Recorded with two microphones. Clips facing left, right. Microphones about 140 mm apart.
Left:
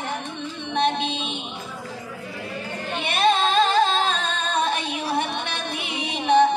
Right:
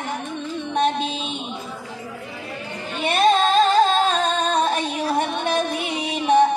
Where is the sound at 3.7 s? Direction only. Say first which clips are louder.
Right 3 dB; 45° right (ahead or behind).